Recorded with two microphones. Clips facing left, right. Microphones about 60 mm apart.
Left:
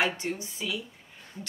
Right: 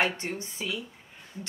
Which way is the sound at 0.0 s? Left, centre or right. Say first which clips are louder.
Even; right.